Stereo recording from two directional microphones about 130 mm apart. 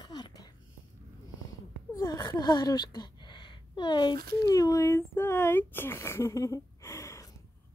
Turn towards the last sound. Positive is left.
turn(degrees=20)  # may be behind; listen again after turning